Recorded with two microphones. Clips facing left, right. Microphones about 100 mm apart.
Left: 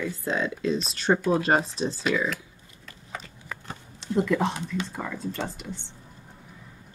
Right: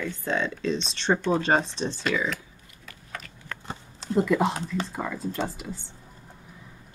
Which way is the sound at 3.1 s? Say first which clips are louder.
Left 1 dB; 15° left (ahead or behind).